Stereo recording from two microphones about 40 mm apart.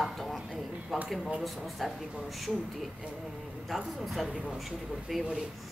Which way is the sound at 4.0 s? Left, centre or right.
Centre.